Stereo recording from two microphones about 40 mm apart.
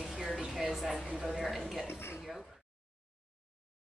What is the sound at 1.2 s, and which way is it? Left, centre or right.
Speech, centre.